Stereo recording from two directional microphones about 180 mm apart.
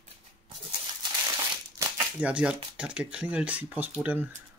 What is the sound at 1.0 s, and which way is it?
Crumpling, 25° right (ahead or behind).